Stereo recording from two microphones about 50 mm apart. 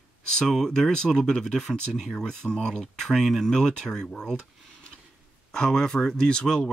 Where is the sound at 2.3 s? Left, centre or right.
Centre.